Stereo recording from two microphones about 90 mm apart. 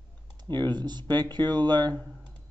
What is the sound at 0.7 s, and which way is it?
Speech, 50° right (ahead or behind).